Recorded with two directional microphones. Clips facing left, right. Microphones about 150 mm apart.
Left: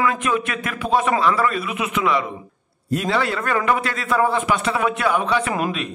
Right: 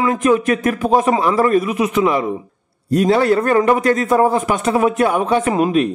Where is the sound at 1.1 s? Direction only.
20° right (ahead or behind).